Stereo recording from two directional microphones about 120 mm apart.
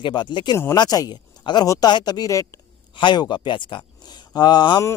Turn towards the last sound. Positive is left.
turn(degrees=35)  # may be behind; listen again after turning